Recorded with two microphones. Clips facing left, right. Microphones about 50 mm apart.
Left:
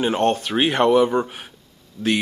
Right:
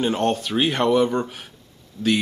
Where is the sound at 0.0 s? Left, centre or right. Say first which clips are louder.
Left 2 dB; centre.